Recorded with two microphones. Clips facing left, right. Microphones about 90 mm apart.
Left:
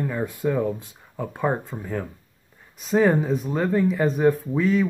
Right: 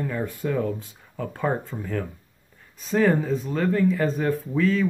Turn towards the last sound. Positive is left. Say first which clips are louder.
# left 1 dB
turn(degrees=15)  # may be behind; listen again after turning